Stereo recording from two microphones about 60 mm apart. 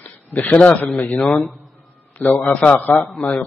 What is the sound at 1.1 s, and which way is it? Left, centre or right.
Speech, centre.